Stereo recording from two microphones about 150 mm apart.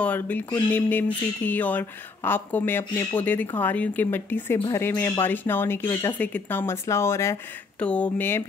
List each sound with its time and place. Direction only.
0.0 s speech: 10° left (ahead or behind)